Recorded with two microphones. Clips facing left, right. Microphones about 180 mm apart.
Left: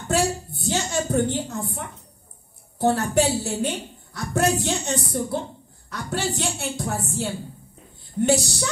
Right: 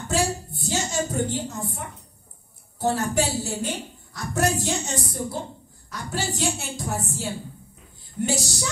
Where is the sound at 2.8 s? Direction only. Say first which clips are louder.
Left 3 dB; 60° left (ahead or behind).